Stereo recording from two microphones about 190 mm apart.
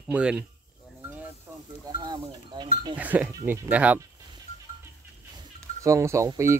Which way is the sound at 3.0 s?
10° right (ahead or behind).